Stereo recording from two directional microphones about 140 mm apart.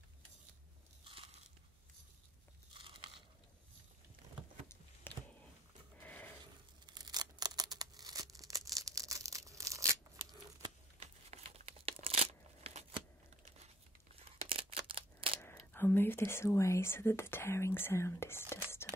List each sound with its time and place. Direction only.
1.0 s biting: 40° right (ahead or behind)
2.7 s crunch: 35° right (ahead or behind)
5.1 s a sound: 15° left (ahead or behind)
6.9 s tearing: 30° right (ahead or behind)
11.0 s tearing: 50° right (ahead or behind)
14.5 s a sound: 40° right (ahead or behind)
15.4 s speech: 15° left (ahead or behind)